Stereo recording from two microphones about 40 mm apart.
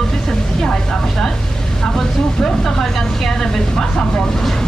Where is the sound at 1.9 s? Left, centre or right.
Centre.